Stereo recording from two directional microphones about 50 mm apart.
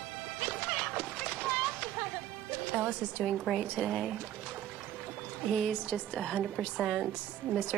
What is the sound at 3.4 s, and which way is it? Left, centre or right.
Speech, centre.